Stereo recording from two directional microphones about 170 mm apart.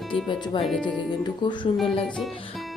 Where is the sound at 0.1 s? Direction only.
30° left (ahead or behind).